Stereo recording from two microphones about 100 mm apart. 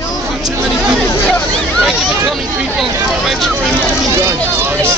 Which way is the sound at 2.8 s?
Centre (ahead or behind).